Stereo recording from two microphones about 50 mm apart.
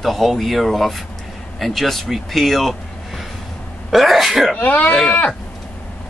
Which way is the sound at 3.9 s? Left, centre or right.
Centre.